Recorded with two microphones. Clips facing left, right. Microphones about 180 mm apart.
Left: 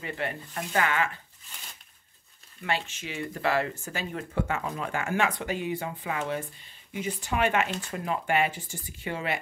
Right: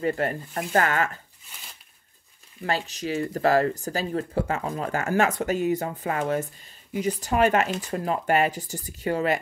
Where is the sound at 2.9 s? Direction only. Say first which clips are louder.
Right 8 dB; 40° right (ahead or behind).